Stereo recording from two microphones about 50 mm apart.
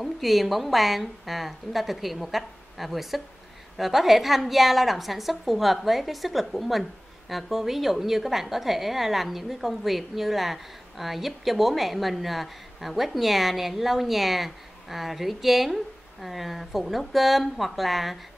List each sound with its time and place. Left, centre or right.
0.0 s a woman's voice: centre